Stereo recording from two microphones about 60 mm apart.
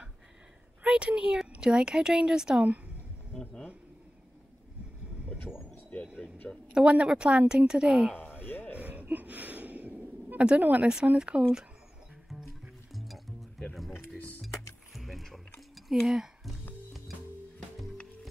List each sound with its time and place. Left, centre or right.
0.8 s a woman's voice: centre
6.1 s speech: left
6.7 s a woman's voice: centre
8.4 s a sound: left
8.7 s gasp: right
9.0 s a sound: right
10.6 s speech: right
12.9 s music: centre
15.0 s music: centre
15.7 s a sound: centre